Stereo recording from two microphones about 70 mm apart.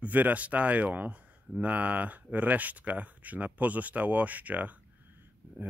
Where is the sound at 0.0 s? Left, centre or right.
Right.